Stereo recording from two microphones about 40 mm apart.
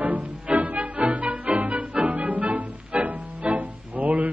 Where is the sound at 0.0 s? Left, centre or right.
Right.